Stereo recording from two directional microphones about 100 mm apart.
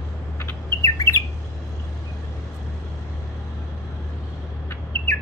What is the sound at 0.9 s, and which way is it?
Bird, 35° left (ahead or behind).